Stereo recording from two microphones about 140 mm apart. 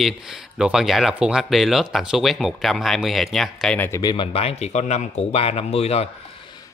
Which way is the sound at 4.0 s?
35° left (ahead or behind).